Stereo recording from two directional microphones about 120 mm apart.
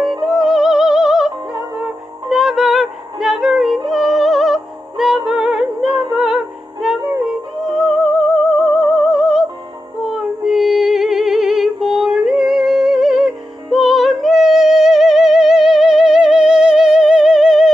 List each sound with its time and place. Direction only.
0.2 s music: 5° right (ahead or behind)
5.9 s music: 40° right (ahead or behind)
6.1 s music: 5° right (ahead or behind)